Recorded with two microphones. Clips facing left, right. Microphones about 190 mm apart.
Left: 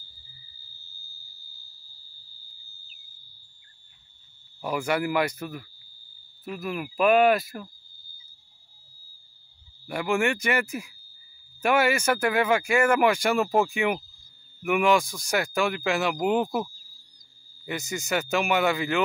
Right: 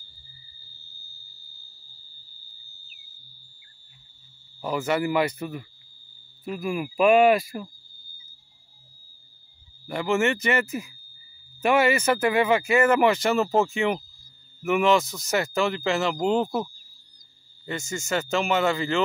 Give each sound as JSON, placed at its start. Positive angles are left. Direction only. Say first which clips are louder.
{"t": 4.6, "sound": "speech", "louder": "right 1 dB", "side_deg": 10}
{"t": 6.6, "sound": "speech", "louder": "right 4 dB", "side_deg": -10}
{"t": 7.0, "sound": "speech", "louder": "right 2 dB", "side_deg": 0}
{"t": 9.8, "sound": "speech", "louder": "right 2 dB", "side_deg": 0}
{"t": 12.8, "sound": "speech", "louder": "right 2 dB", "side_deg": 10}
{"t": 13.7, "sound": "speech", "louder": "right 1 dB", "side_deg": 0}
{"t": 15.0, "sound": "speech", "louder": "right 1 dB", "side_deg": -5}
{"t": 16.3, "sound": "speech", "louder": "right 1 dB", "side_deg": 15}